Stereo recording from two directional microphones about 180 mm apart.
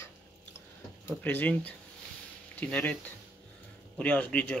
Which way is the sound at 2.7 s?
5° left (ahead or behind).